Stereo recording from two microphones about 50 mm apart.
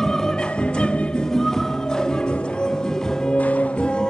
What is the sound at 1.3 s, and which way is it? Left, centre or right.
Music, centre.